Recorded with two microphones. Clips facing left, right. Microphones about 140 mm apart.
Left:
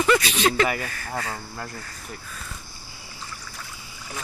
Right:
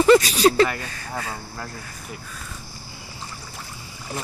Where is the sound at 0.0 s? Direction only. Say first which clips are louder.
Right 6 dB; 35° right (ahead or behind).